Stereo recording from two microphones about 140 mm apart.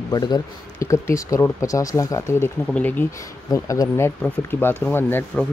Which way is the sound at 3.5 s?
25° left (ahead or behind).